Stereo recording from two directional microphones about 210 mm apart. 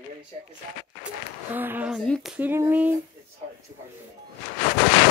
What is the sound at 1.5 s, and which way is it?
Speech, 10° right (ahead or behind).